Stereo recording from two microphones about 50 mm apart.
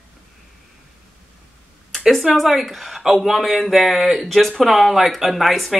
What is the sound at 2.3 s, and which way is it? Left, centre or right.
Speech, centre.